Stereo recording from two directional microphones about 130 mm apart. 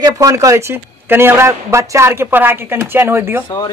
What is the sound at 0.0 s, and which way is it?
A man's voice, 25° right (ahead or behind).